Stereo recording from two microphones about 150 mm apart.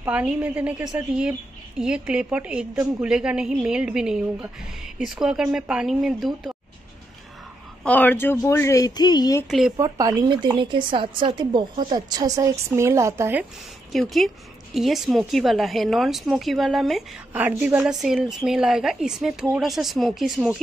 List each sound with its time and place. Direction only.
0.0 s a woman's voice: 10° right (ahead or behind)
7.8 s speech: 10° left (ahead or behind); by 9.4 s 25° left (ahead or behind)
9.5 s a woman's voice: 5° right (ahead or behind)
9.8 s a woman's voice: 25° right (ahead or behind)
13.9 s a woman's voice: centre (ahead or behind)
17.3 s a woman's voice: 10° right (ahead or behind)